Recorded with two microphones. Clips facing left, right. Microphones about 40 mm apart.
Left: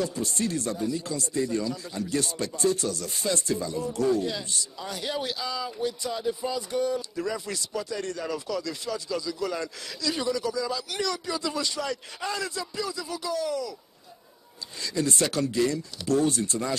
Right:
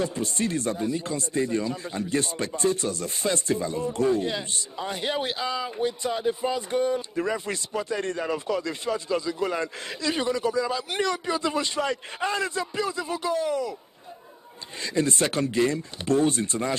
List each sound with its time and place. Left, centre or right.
0.0 s speech: right
14.8 s speech: right